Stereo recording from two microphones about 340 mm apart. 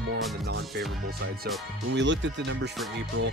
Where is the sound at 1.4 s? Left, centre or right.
Right.